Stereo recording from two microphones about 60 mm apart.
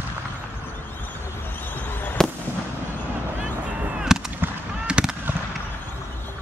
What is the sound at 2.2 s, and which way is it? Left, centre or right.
Fireworks, centre.